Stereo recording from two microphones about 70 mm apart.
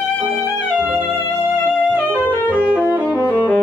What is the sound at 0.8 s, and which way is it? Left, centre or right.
Music, right.